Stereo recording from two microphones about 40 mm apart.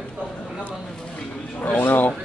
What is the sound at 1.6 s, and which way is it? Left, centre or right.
Speech, left.